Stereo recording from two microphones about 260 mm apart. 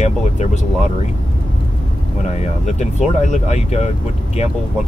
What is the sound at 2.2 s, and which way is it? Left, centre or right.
Speech, left.